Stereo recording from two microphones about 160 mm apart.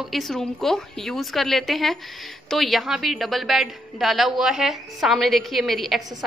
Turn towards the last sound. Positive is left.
turn(degrees=0)  # may be behind; listen again after turning